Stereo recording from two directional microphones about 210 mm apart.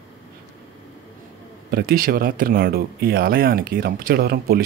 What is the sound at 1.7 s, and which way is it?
Speech, 45° right (ahead or behind).